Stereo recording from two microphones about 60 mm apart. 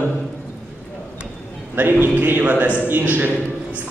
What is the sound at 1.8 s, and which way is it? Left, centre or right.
A man's voice, right.